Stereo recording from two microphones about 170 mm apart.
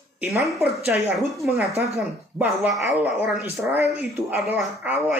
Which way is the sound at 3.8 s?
40° left (ahead or behind).